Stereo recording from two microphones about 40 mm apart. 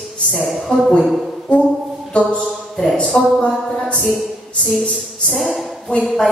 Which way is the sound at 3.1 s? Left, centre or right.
Centre.